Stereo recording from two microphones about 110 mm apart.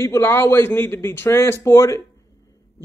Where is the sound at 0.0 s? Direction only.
25° left (ahead or behind).